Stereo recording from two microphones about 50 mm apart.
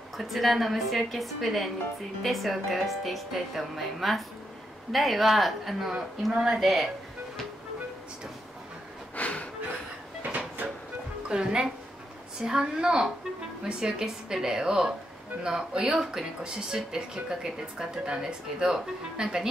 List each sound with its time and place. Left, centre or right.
0.2 s a woman's voice: centre
9.1 s snort: left
11.2 s a woman's voice: centre